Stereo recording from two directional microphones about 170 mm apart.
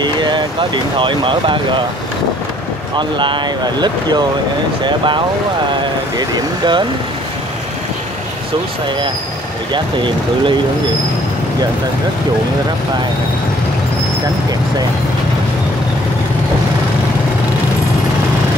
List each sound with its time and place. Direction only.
0.0 s speech: 25° right (ahead or behind)
3.0 s speech: 30° right (ahead or behind)
9.7 s speech: 30° right (ahead or behind)